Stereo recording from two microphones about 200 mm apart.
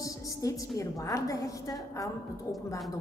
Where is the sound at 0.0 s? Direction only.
15° left (ahead or behind).